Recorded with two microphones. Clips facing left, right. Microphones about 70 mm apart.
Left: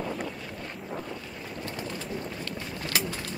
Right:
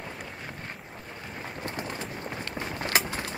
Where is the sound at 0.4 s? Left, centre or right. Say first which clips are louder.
Left 1 dB; right.